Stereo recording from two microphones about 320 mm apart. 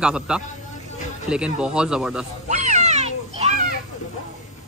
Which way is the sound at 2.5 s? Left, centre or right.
Right.